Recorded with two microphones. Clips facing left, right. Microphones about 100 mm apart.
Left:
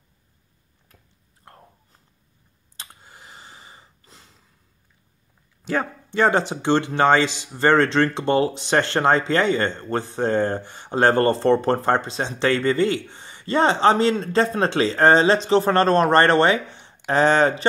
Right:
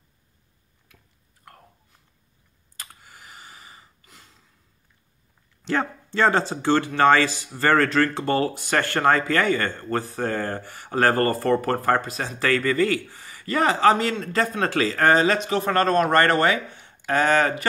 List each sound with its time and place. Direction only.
1.4 s biting: 30° left (ahead or behind)
2.8 s a sound: 25° left (ahead or behind)
5.6 s speech: 10° left (ahead or behind); by 17.6 s 25° left (ahead or behind)